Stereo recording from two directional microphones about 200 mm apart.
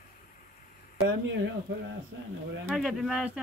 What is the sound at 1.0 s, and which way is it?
Speech, 70° right (ahead or behind).